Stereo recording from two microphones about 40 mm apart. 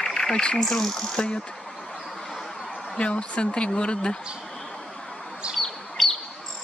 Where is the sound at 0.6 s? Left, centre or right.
Centre.